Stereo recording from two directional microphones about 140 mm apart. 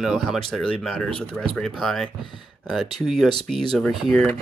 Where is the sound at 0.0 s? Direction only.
Centre (ahead or behind).